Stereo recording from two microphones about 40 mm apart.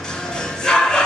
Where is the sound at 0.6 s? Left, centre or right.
Centre.